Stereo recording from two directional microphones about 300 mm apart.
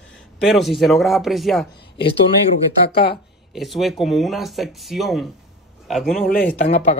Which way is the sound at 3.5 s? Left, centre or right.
Centre.